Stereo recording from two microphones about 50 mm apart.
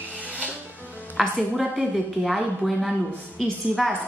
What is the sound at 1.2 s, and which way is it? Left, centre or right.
A woman's voice, centre.